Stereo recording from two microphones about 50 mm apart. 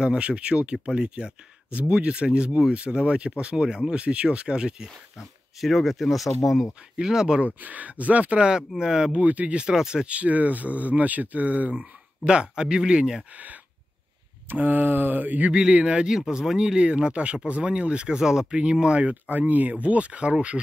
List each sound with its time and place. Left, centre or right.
0.0 s speech: centre
5.6 s speech: centre
7.0 s speech: centre
7.6 s speech: right; by 9.2 s centre
9.2 s speech: right
9.7 s speech: centre
10.0 s speech: right
13.3 s speech: right
15.5 s speech: centre
16.1 s speech: centre
20.5 s speech: left